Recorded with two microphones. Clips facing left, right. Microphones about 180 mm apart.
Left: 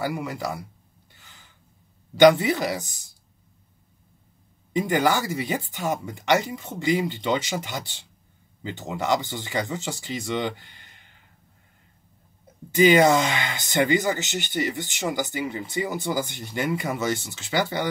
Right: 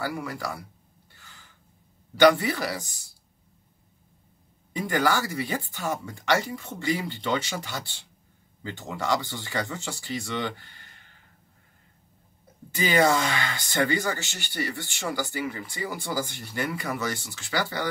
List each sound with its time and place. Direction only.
0.0 s speech: 20° left (ahead or behind)
2.1 s speech: 20° left (ahead or behind)
4.7 s speech: 20° left (ahead or behind)
12.7 s speech: 20° left (ahead or behind)